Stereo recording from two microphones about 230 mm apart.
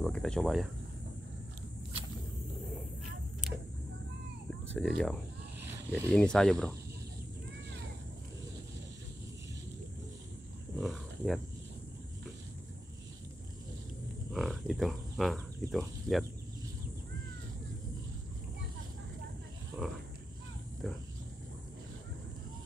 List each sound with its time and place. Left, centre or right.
0.0 s speech: centre
4.7 s speech: centre
10.8 s wild animals: centre
14.3 s speech: centre
20.8 s a sound: centre